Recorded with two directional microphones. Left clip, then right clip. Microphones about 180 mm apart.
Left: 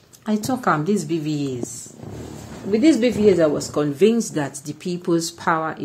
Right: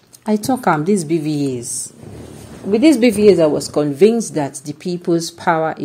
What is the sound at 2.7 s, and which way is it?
Speech, 35° right (ahead or behind).